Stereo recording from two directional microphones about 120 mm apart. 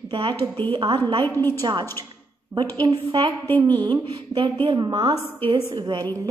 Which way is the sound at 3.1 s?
45° right (ahead or behind).